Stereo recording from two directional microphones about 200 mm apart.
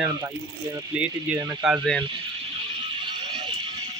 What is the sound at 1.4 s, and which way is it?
Speech, 20° right (ahead or behind).